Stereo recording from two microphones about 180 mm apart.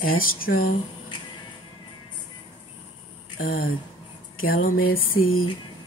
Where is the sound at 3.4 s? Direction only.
50° left (ahead or behind).